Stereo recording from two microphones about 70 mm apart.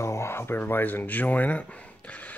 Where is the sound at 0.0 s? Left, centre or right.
Left.